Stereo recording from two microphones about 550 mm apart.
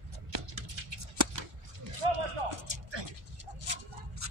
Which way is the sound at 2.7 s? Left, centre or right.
Right.